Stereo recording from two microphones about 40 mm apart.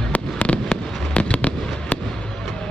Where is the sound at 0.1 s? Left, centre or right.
Left.